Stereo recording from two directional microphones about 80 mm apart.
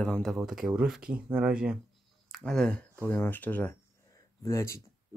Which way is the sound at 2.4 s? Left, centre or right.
Centre.